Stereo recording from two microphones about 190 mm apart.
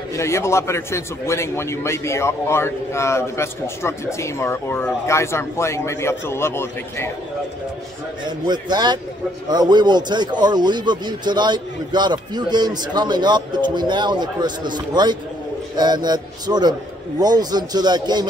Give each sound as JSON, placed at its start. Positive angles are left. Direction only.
{"t": 0.1, "sound": "a man's voice", "side_deg": 15}
{"t": 8.5, "sound": "a man's voice", "side_deg": -20}